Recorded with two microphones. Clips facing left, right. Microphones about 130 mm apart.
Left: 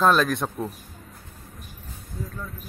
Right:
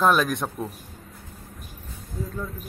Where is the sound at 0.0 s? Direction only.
15° right (ahead or behind).